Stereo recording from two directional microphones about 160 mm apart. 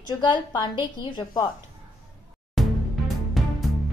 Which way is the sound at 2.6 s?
Centre (ahead or behind).